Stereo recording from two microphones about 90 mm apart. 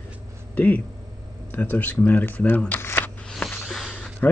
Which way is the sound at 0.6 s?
20° left (ahead or behind).